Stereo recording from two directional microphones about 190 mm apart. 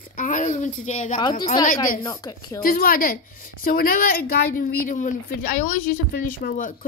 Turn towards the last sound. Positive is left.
turn(degrees=50)  # may be behind; listen again after turning